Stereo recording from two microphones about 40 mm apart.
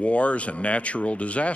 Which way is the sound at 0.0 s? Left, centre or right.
Left.